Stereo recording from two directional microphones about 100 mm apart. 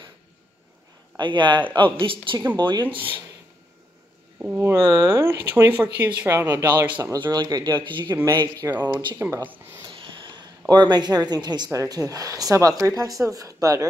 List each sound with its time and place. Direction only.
1.1 s a man's voice: 50° right (ahead or behind)
2.9 s speech: 55° right (ahead or behind)
4.6 s speech: 25° right (ahead or behind)
6.2 s speech: 30° right (ahead or behind)
7.2 s speech: 50° right (ahead or behind)
9.1 s speech: 30° right (ahead or behind)
9.8 s a sound: 60° right (ahead or behind)
10.7 s speech: 45° right (ahead or behind)